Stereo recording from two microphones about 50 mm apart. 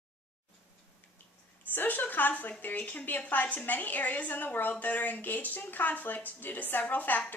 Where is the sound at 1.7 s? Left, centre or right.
Left.